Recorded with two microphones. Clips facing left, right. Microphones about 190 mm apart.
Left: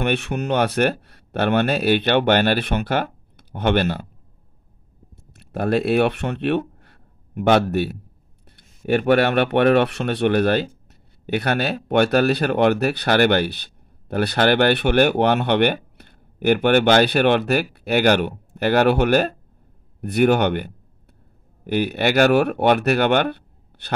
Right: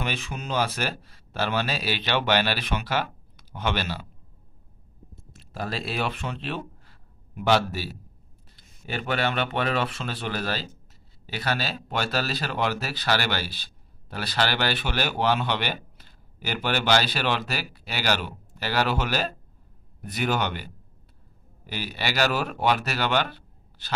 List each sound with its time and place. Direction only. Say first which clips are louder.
0.0 s speech: left 10 dB; 65° left (ahead or behind)
5.3 s speech: left 12 dB; 60° left (ahead or behind)